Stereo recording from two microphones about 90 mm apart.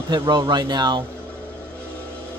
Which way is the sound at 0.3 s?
55° right (ahead or behind).